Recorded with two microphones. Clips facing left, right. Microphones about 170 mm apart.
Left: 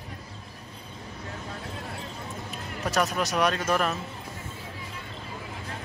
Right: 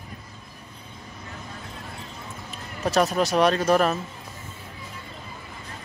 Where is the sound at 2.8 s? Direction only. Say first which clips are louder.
Right 5 dB; 30° right (ahead or behind).